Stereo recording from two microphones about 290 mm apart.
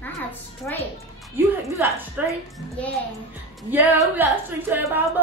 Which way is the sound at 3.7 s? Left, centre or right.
Centre.